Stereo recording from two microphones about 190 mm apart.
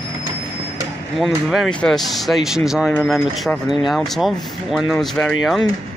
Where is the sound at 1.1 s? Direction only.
Centre (ahead or behind).